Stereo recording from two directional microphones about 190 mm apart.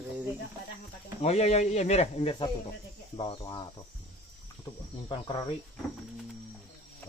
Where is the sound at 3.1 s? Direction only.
25° left (ahead or behind).